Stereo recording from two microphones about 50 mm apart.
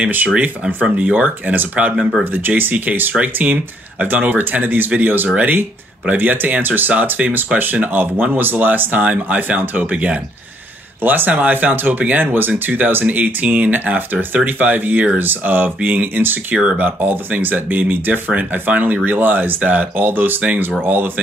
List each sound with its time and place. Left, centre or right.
0.0 s speech: right
0.8 s speech: right
1.2 s speech: right
11.0 s speech: right